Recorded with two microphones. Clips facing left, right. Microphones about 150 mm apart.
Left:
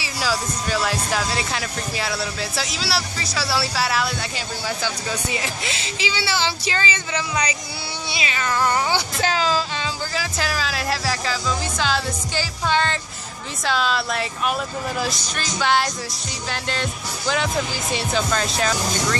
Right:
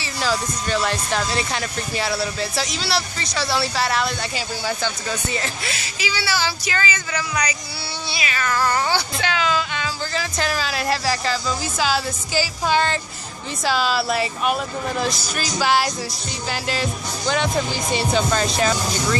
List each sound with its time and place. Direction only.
0.0 s speech: 5° left (ahead or behind)
5.7 s speech: 25° left (ahead or behind)
9.2 s speech: 35° left (ahead or behind)
10.1 s speech: centre (ahead or behind)